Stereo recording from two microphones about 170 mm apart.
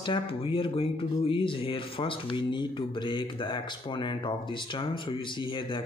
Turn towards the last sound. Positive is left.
turn(degrees=30)  # may be behind; listen again after turning